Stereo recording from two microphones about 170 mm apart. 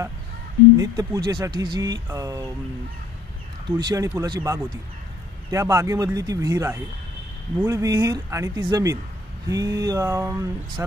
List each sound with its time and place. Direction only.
0.7 s speech: 20° right (ahead or behind)
3.6 s speech: 20° right (ahead or behind)